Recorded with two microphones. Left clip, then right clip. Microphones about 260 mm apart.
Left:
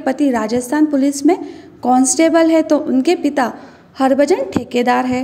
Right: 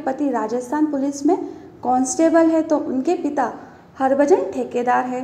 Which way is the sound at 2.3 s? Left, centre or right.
Left.